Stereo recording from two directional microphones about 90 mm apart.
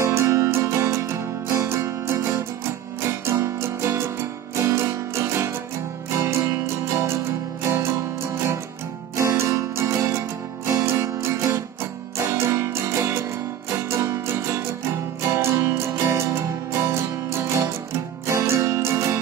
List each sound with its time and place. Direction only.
0.0 s music: 30° right (ahead or behind)
9.3 s music: 30° right (ahead or behind)